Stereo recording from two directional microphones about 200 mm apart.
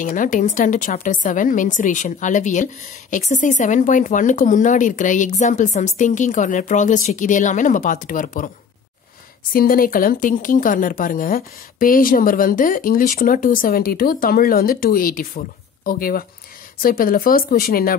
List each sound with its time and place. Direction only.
0.0 s a woman's voice: 40° left (ahead or behind)
9.5 s speech: 45° left (ahead or behind)